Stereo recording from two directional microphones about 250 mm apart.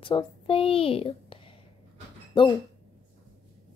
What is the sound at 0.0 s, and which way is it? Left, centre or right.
A woman's voice, left.